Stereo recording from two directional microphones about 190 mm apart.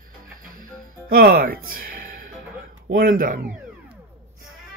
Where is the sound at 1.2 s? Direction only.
50° right (ahead or behind).